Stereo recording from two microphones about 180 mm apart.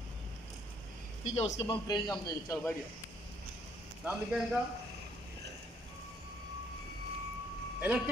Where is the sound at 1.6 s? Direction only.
25° left (ahead or behind).